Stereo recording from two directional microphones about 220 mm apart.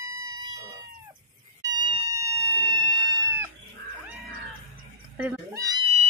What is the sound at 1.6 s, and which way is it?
Cat, 15° right (ahead or behind).